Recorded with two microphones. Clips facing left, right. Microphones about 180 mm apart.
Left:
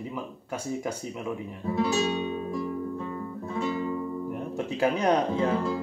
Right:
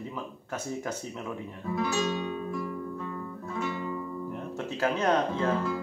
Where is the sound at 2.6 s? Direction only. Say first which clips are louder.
Left 3 dB; 30° left (ahead or behind).